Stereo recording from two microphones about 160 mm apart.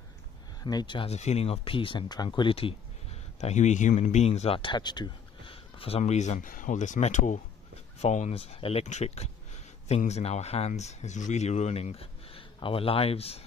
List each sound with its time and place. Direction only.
0.7 s speech: 25° left (ahead or behind)
3.3 s speech: 45° left (ahead or behind)